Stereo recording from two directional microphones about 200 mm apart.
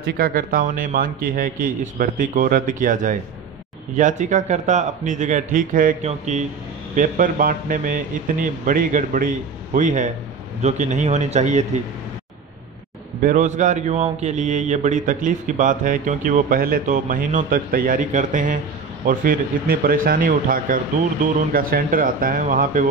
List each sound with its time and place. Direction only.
0.0 s a man's voice: 50° right (ahead or behind)
13.2 s a man's voice: 40° right (ahead or behind)